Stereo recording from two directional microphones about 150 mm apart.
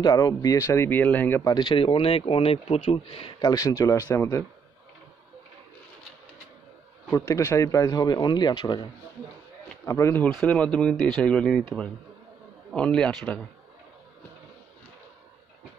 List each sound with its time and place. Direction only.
0.0 s speech: 25° left (ahead or behind)
1.5 s speech: 30° left (ahead or behind)
7.1 s speech: 20° left (ahead or behind)
9.8 s speech: 20° left (ahead or behind)